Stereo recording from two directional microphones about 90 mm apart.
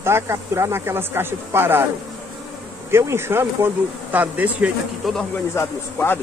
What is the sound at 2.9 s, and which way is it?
Speech, 30° right (ahead or behind).